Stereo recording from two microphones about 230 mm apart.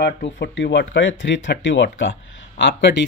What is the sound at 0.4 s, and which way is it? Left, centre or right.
Speech, left.